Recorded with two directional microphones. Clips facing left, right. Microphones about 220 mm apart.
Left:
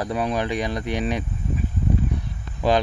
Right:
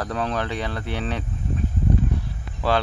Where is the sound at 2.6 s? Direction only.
15° left (ahead or behind).